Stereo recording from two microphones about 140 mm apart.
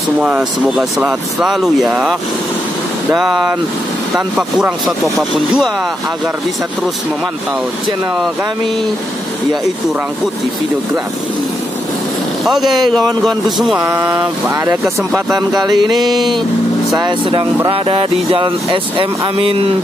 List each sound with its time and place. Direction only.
0.2 s speech: 5° right (ahead or behind)
3.2 s speech: 5° right (ahead or behind)
12.4 s speech: centre (ahead or behind)
13.8 s speech: 15° right (ahead or behind)
14.1 s speech: 30° right (ahead or behind)
17.6 s speech: 40° right (ahead or behind)